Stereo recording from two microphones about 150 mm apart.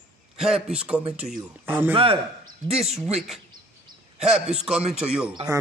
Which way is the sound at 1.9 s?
40° right (ahead or behind).